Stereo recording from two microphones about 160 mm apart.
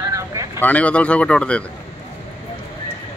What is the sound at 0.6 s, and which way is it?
Speech, 10° left (ahead or behind).